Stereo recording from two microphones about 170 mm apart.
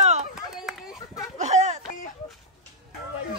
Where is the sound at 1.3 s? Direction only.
40° right (ahead or behind).